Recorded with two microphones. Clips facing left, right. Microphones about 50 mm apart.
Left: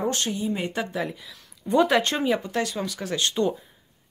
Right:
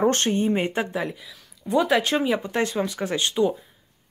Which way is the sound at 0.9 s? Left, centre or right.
Centre.